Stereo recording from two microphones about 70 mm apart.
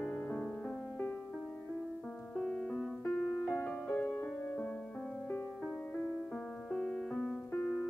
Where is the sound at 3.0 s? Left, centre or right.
Left.